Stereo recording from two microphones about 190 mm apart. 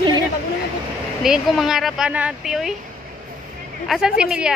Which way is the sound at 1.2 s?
Centre (ahead or behind).